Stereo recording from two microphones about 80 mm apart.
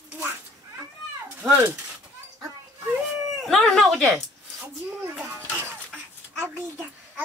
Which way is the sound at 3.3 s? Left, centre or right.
Centre.